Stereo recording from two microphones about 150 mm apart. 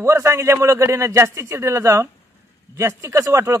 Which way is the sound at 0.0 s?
20° right (ahead or behind).